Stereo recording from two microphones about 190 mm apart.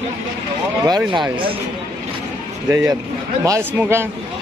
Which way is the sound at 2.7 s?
20° right (ahead or behind).